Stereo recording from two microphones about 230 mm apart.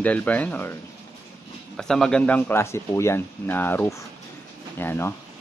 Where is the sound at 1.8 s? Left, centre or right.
Centre.